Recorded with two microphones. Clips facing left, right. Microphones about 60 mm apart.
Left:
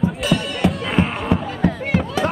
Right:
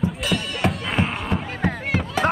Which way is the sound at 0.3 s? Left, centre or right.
Centre.